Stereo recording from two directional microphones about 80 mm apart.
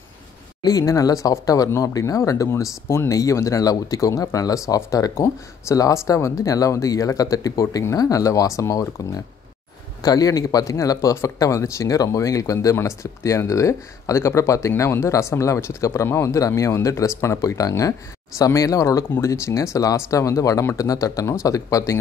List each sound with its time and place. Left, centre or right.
0.7 s speech: left
10.0 s speech: left